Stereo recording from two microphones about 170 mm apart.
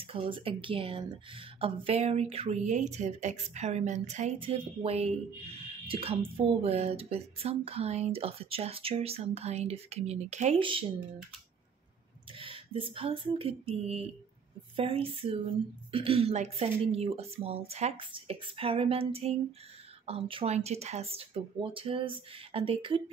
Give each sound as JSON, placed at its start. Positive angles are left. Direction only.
{"t": 0.0, "sound": "a woman's voice", "side_deg": -30}
{"t": 10.6, "sound": "a woman's voice", "side_deg": -30}
{"t": 12.4, "sound": "a woman's voice", "side_deg": -30}